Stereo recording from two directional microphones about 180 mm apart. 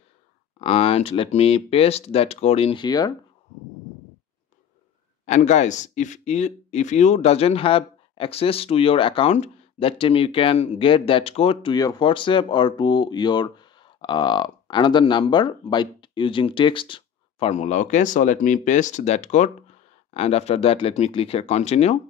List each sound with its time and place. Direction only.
0.6 s speech: 35° left (ahead or behind)
5.2 s speech: 40° left (ahead or behind)